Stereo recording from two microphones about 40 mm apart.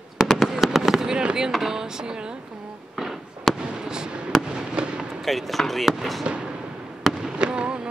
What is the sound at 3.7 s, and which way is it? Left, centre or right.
Fireworks, centre.